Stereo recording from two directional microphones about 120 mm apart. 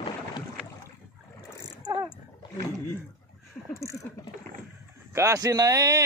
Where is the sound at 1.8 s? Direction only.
35° right (ahead or behind).